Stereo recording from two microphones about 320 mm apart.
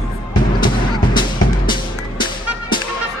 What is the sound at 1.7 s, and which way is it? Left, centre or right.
Music, centre.